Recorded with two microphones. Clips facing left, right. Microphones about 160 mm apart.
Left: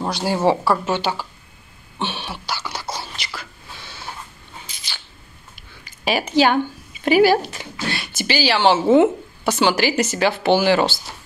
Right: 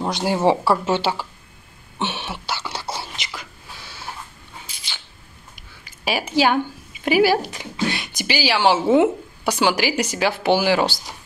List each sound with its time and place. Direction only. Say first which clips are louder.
0.1 s a woman's voice: even; 20° right (ahead or behind)
2.0 s whispering: even; 20° right (ahead or behind)
4.7 s a sound: left 1 dB; 10° right (ahead or behind)
7.1 s speech: left 2 dB; 10° right (ahead or behind)